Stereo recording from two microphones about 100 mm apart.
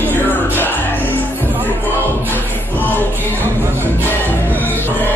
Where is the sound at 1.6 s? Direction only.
20° right (ahead or behind).